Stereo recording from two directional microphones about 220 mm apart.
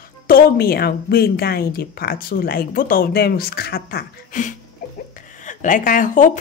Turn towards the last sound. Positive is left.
turn(degrees=35)  # may be behind; listen again after turning